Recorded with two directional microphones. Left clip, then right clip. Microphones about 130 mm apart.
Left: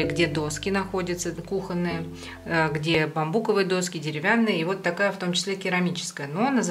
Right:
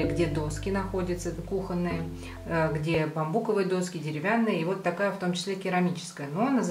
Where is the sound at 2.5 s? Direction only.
35° left (ahead or behind).